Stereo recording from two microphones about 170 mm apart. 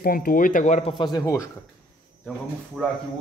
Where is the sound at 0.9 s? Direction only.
25° left (ahead or behind).